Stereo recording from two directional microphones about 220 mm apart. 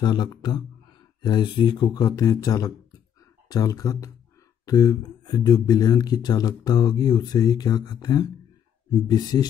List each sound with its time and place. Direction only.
0.0 s speech: 20° left (ahead or behind)